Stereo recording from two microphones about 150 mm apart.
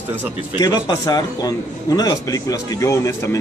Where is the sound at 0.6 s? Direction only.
25° left (ahead or behind).